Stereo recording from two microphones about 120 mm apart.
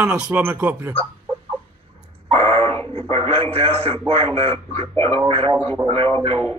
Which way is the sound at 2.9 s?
55° right (ahead or behind).